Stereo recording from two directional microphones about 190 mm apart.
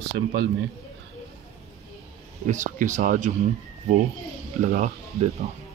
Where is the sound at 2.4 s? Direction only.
40° right (ahead or behind).